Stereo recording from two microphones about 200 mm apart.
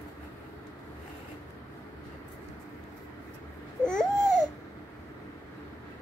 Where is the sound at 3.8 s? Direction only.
5° left (ahead or behind).